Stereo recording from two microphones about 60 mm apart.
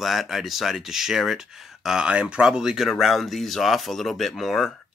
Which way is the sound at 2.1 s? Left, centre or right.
Centre.